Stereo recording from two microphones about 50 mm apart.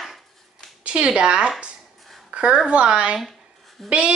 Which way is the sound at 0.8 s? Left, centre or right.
Centre.